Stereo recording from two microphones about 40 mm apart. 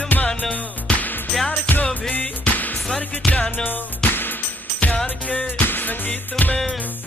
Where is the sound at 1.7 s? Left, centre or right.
Left.